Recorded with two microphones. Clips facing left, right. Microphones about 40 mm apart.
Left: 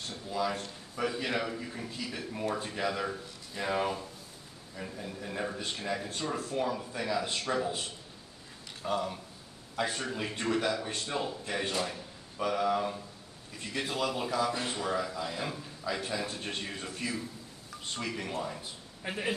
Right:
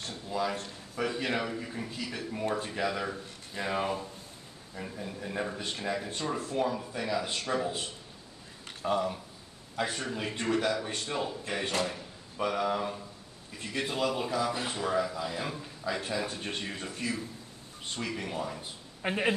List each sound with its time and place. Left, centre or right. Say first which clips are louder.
0.1 s a sound: even; centre
0.9 s a man's voice: right 1 dB; centre
8.9 s a man's voice: right 2 dB; centre
18.6 s speech: right 5 dB; right